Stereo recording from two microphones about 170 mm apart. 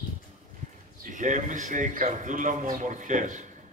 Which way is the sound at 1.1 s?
50° right (ahead or behind).